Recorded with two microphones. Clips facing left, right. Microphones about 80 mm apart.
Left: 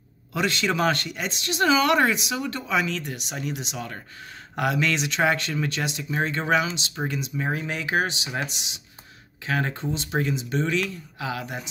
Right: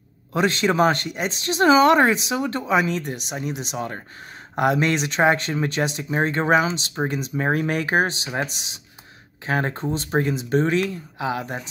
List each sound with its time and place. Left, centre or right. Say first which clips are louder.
0.3 s speech: right 4 dB; right
11.1 s speech: right 4 dB; right